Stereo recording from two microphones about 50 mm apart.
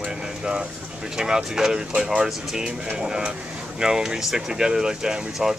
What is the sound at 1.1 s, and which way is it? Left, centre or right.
Speech, centre.